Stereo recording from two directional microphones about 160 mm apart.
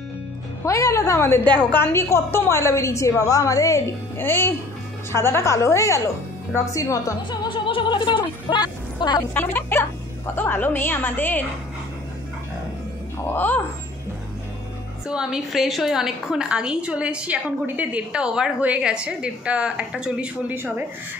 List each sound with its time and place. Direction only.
0.7 s a woman's voice: 20° left (ahead or behind)
9.3 s a woman's voice: 10° left (ahead or behind)
13.3 s a woman's voice: 10° left (ahead or behind)
15.0 s a woman's voice: 5° right (ahead or behind)